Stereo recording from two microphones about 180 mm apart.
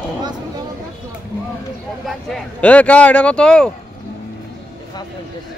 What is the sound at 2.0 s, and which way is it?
Speech, centre (ahead or behind).